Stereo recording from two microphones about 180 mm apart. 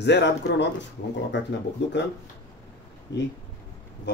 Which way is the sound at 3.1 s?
75° left (ahead or behind).